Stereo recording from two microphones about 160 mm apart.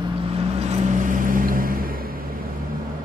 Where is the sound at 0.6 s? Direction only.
45° right (ahead or behind); by 1.9 s 60° right (ahead or behind).